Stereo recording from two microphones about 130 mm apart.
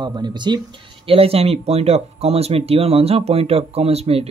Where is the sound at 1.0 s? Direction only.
45° right (ahead or behind).